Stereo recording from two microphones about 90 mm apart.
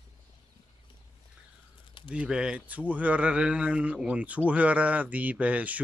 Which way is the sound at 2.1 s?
10° right (ahead or behind).